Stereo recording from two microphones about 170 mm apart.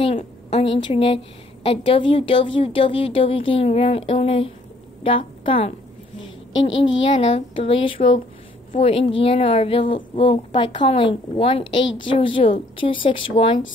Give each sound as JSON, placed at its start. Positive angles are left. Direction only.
{"t": 0.0, "sound": "a woman's voice", "side_deg": 35}
{"t": 7.0, "sound": "a woman's voice", "side_deg": 30}